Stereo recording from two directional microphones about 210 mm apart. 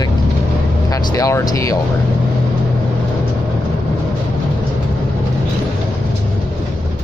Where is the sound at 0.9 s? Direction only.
15° left (ahead or behind).